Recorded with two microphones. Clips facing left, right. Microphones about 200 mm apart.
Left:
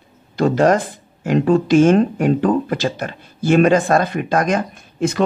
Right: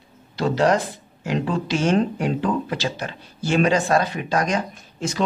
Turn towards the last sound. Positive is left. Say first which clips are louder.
# left 7 dB
turn(degrees=55)  # may be behind; listen again after turning